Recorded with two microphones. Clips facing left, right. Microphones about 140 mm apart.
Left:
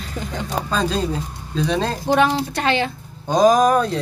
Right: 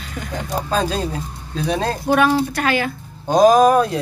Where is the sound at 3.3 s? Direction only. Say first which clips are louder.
Right 2 dB; 5° right (ahead or behind).